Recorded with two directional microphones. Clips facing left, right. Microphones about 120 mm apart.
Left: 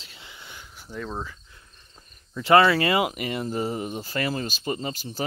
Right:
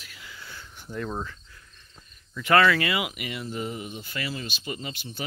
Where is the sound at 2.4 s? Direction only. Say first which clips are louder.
Left 3 dB; 30° left (ahead or behind).